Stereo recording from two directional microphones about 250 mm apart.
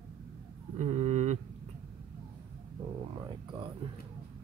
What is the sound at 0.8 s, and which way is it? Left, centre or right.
Speech, right.